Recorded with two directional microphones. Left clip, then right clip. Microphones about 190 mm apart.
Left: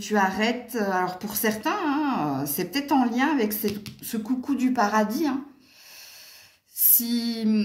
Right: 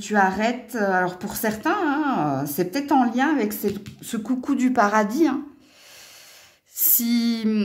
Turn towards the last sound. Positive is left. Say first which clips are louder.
# right 3 dB
turn(degrees=-45)  # may be behind; listen again after turning